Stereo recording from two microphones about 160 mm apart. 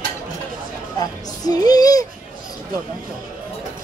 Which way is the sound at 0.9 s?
25° left (ahead or behind).